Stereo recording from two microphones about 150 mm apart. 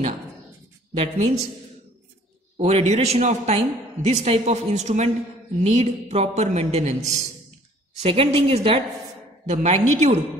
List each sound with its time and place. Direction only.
0.9 s a woman's voice: 45° right (ahead or behind)
2.5 s a woman's voice: 45° right (ahead or behind)
8.0 s a woman's voice: 40° right (ahead or behind)
9.5 s a woman's voice: 50° right (ahead or behind)